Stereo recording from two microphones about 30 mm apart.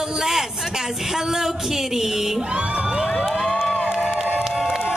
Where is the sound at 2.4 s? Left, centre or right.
Right.